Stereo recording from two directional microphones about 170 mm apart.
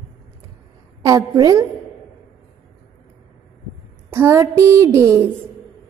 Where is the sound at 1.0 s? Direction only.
20° right (ahead or behind).